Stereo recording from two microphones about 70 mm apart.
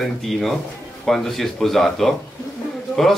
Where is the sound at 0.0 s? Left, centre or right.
Centre.